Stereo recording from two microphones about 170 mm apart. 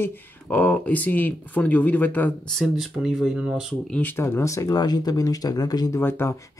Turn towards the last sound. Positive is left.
turn(degrees=15)  # may be behind; listen again after turning